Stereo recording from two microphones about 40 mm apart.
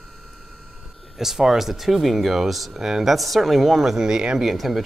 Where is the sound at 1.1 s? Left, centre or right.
Centre.